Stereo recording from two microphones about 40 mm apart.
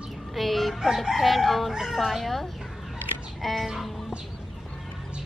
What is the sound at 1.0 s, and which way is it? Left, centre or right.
Chicken, centre.